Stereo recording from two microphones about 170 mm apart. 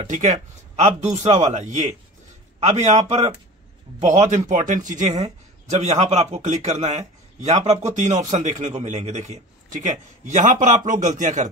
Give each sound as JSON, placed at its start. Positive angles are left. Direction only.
{"t": 0.0, "sound": "a man's voice", "side_deg": -45}